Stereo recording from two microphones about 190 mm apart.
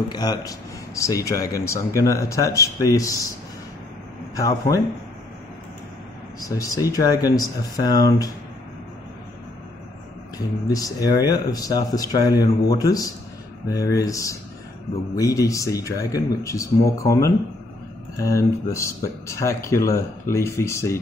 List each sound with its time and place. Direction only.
0.1 s speech: 20° left (ahead or behind)
4.4 s speech: 20° left (ahead or behind)
6.4 s speech: 20° left (ahead or behind)
10.3 s speech: 20° left (ahead or behind)